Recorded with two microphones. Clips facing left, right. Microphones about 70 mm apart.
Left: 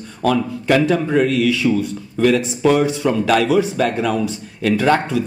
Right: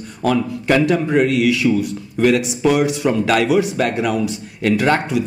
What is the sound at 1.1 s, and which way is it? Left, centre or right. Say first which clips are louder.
Speech: right 1 dB; centre.